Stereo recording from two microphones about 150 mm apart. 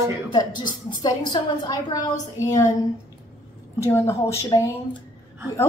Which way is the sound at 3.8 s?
20° left (ahead or behind).